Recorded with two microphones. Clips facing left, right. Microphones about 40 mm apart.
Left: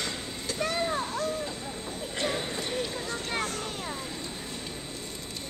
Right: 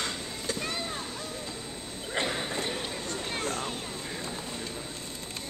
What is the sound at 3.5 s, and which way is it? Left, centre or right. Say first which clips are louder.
Vehicle: right 2 dB; right.